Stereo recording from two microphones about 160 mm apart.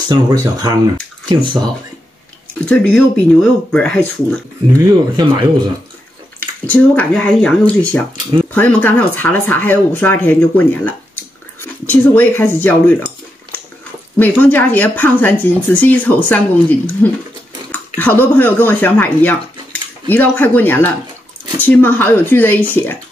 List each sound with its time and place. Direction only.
0.1 s speech: 25° right (ahead or behind)
2.6 s speech: 10° left (ahead or behind)
4.7 s speech: 25° right (ahead or behind)
6.7 s speech: 10° left (ahead or behind)
14.1 s speech: 10° left (ahead or behind)